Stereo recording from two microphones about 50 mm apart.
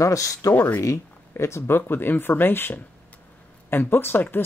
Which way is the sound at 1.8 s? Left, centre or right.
Left.